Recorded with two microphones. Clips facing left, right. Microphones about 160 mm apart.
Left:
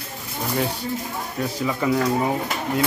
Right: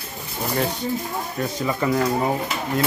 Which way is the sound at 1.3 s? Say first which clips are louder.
Left 1 dB; centre (ahead or behind).